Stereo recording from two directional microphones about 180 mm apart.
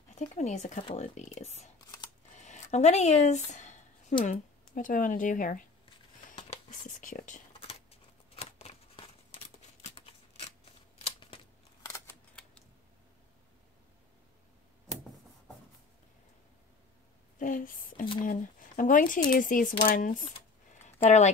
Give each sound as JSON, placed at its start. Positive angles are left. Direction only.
{"t": 0.1, "sound": "speech", "side_deg": 40}
{"t": 1.8, "sound": "scissors", "side_deg": 25}
{"t": 2.3, "sound": "speech", "side_deg": 40}
{"t": 6.3, "sound": "whispering", "side_deg": 40}
{"t": 9.8, "sound": "a sound", "side_deg": 35}
{"t": 11.1, "sound": "scissors", "side_deg": 30}
{"t": 17.4, "sound": "a sound", "side_deg": 45}
{"t": 18.2, "sound": "speech", "side_deg": 50}
{"t": 20.8, "sound": "a sound", "side_deg": 40}